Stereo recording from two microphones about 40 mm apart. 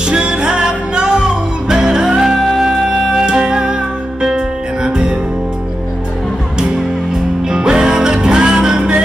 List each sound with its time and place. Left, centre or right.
0.0 s music: right
4.8 s music: centre
6.6 s music: centre